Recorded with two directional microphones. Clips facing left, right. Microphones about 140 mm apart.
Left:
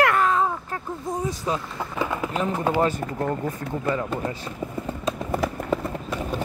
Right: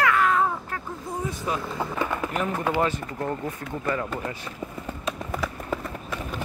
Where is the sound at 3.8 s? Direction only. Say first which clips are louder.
Left 2 dB; 25° left (ahead or behind).